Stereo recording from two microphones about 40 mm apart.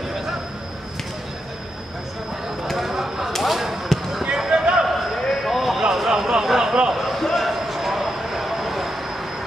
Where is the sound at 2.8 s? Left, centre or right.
Centre.